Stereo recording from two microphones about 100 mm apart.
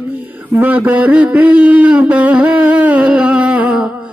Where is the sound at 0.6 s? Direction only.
15° right (ahead or behind).